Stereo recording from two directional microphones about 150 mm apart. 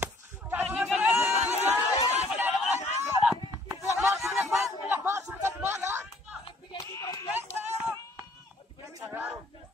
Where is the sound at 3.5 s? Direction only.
15° right (ahead or behind).